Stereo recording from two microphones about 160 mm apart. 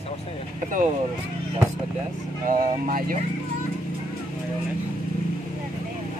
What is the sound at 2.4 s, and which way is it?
Speech, 60° right (ahead or behind).